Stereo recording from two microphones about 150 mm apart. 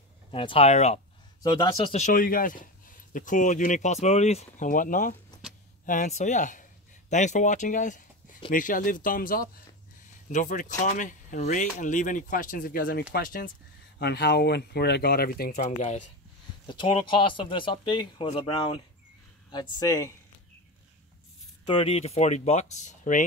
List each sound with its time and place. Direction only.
0.3 s speech: 40° left (ahead or behind)
1.4 s speech: 25° left (ahead or behind)
1.9 s speech: 50° left (ahead or behind)
2.1 s speech: 70° left (ahead or behind); by 4.6 s 45° left (ahead or behind)
4.6 s speech: 65° left (ahead or behind)
10.3 s speech: 60° left (ahead or behind); by 13.5 s 80° left
13.9 s speech: 90° left
15.5 s speech: 50° left (ahead or behind)
16.6 s speech: 30° left (ahead or behind)
21.6 s speech: 40° left (ahead or behind); by 23.2 s 55° left (ahead or behind)